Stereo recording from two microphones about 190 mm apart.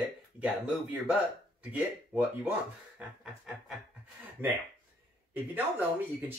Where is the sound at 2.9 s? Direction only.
5° right (ahead or behind).